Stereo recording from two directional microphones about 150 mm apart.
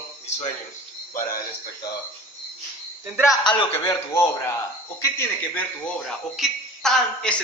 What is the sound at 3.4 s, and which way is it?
Speech, 30° left (ahead or behind).